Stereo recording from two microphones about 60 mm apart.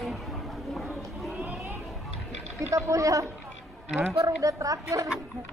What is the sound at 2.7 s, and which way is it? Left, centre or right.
A woman's voice, right.